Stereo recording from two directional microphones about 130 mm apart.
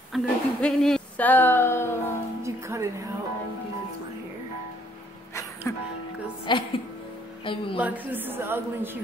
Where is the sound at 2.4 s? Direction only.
20° right (ahead or behind).